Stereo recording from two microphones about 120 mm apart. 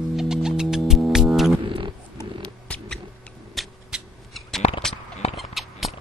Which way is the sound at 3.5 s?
Centre (ahead or behind).